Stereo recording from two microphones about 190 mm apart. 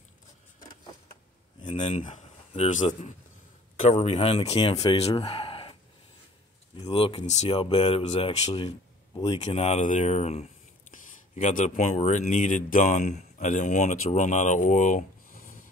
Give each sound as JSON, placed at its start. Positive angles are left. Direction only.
{"t": 1.7, "sound": "speech", "side_deg": 40}
{"t": 6.8, "sound": "speech", "side_deg": 25}